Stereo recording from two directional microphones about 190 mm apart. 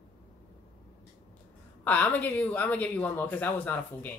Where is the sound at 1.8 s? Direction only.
10° left (ahead or behind).